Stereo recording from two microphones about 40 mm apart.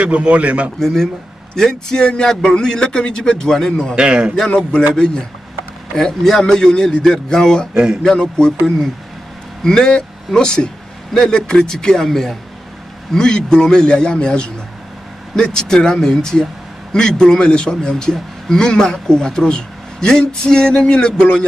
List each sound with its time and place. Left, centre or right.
0.0 s a man's voice: right
0.7 s a man's voice: centre
3.9 s a man's voice: right
4.9 s a man's voice: centre
7.7 s a man's voice: centre
8.0 s a man's voice: centre
9.6 s a man's voice: centre